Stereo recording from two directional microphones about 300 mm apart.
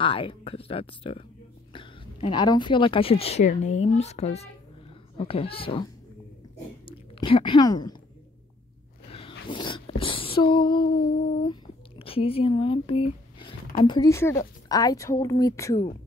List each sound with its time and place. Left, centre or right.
0.0 s speech: centre
6.9 s speech: centre
9.5 s speech: centre
11.4 s a sound: centre
13.8 s speech: centre